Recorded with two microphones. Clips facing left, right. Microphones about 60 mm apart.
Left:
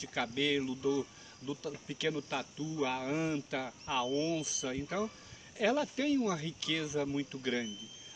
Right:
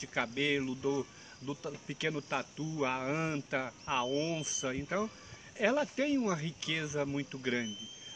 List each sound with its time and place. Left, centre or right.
0.0 s speech: right